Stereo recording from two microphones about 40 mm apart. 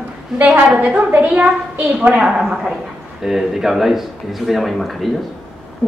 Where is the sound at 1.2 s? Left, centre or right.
Right.